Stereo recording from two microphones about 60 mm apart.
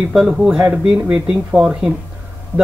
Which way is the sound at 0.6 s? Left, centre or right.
Centre.